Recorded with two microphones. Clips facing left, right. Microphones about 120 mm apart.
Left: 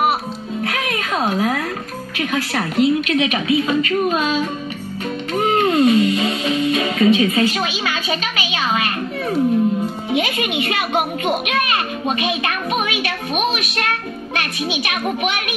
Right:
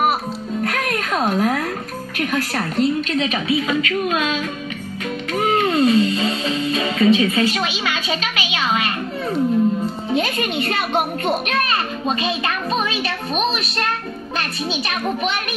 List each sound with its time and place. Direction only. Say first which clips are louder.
0.7 s music: even; 5° left (ahead or behind)
2.1 s a woman's voice: left 1 dB; 5° left (ahead or behind)
3.3 s a woman's voice: left 2 dB; 30° right (ahead or behind)
3.6 s speech: left 3 dB; 40° left (ahead or behind)
5.3 s music: left 2 dB; 30° left (ahead or behind)
5.8 s music: left 1 dB; 30° right (ahead or behind)
7.5 s a sound: left 1 dB; 25° left (ahead or behind)
9.3 s speech: left 1 dB; 5° left (ahead or behind)
12.8 s speech: left 1 dB; 30° right (ahead or behind)
14.3 s a child's voice: left 1 dB; 10° left (ahead or behind)